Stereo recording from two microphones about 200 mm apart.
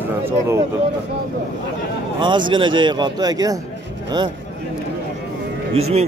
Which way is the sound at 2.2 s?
25° right (ahead or behind).